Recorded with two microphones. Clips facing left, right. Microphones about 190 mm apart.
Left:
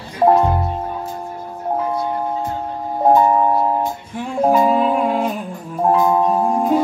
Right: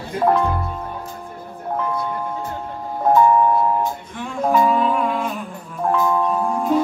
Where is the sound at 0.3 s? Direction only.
40° left (ahead or behind).